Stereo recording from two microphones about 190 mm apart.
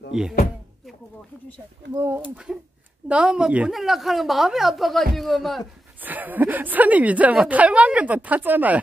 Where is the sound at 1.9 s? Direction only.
15° right (ahead or behind).